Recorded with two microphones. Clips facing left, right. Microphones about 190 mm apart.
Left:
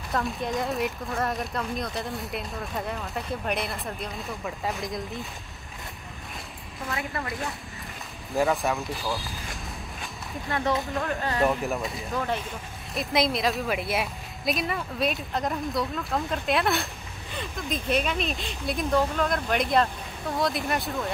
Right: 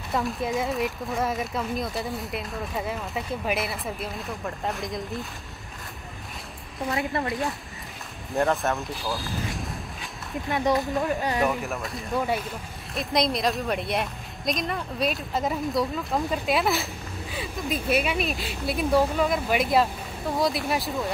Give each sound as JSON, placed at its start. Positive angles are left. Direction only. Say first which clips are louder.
{"t": 0.1, "sound": "a woman's voice", "louder": "right 2 dB", "side_deg": 0}
{"t": 6.9, "sound": "a woman's voice", "louder": "right 5 dB", "side_deg": -25}
{"t": 8.4, "sound": "speech", "louder": "even", "side_deg": 0}
{"t": 10.5, "sound": "speech", "louder": "right 3 dB", "side_deg": -15}
{"t": 11.4, "sound": "a woman's voice", "louder": "left 1 dB", "side_deg": 0}